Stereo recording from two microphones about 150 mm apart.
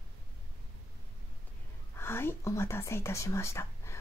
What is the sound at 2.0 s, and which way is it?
Speech, 15° left (ahead or behind).